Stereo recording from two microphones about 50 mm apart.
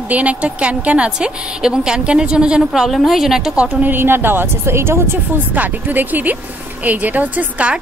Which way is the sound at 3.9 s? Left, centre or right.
Right.